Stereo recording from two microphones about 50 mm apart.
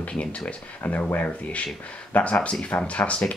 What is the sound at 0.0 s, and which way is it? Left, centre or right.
Speech, left.